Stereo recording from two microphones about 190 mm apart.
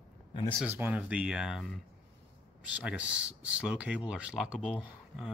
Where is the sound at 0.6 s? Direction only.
10° right (ahead or behind).